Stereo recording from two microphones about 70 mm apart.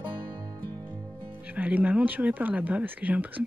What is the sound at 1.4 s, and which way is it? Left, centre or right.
Speech, right.